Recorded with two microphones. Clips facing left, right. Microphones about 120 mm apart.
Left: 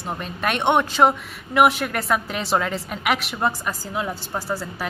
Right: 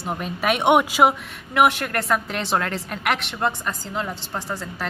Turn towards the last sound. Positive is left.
turn(degrees=5)  # may be behind; listen again after turning